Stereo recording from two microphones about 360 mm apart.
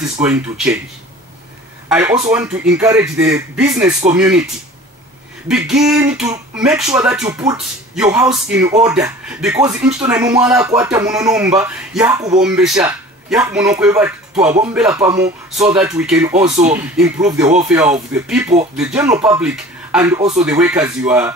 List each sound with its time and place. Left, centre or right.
0.0 s speech: centre
1.9 s speech: centre
5.5 s speech: centre
16.3 s speech: centre
16.7 s speech: centre